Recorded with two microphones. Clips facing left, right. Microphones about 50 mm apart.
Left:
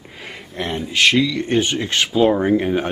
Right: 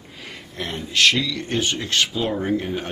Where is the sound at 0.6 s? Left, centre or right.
Centre.